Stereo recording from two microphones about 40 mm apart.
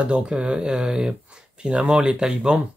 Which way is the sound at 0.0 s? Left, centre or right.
Right.